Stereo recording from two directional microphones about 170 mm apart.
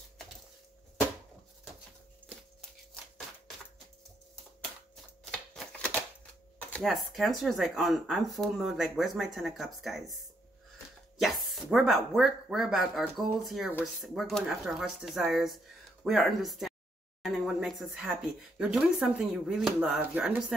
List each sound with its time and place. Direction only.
5.2 s typewriter: 5° left (ahead or behind)
6.7 s speech: centre (ahead or behind)
11.1 s speech: centre (ahead or behind)